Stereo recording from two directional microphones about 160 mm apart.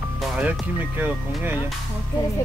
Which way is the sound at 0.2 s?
5° right (ahead or behind).